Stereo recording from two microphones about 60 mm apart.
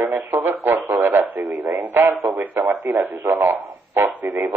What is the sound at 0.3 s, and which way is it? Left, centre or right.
Radio, right.